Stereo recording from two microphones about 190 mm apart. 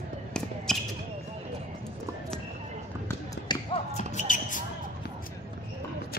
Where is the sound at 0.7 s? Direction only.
Centre (ahead or behind).